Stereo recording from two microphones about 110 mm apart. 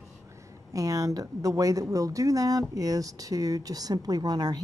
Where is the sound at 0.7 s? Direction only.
30° right (ahead or behind).